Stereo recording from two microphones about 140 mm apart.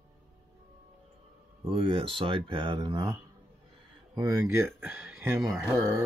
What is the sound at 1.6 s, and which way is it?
Speech, 40° right (ahead or behind).